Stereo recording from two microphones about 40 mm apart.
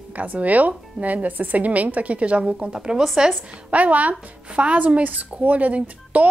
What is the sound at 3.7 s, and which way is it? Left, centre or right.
Speech, right.